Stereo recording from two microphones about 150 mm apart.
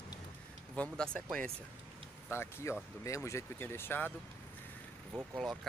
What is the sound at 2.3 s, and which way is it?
Speech, 15° left (ahead or behind).